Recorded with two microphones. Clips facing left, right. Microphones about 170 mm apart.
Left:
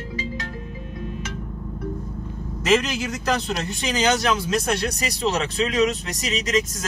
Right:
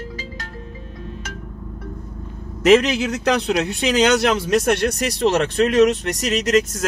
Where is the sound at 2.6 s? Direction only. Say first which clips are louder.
Right 7 dB; 65° right (ahead or behind).